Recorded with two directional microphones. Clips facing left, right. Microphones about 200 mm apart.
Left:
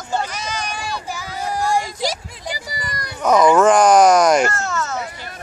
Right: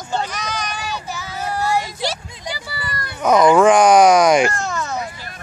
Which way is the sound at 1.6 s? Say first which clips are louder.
Even; 5° right (ahead or behind).